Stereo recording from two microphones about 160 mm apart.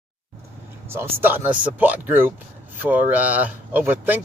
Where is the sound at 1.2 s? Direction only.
10° right (ahead or behind).